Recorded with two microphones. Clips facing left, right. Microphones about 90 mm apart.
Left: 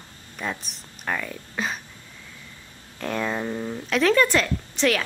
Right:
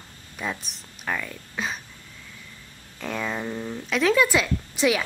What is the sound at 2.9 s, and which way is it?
Speech, centre (ahead or behind).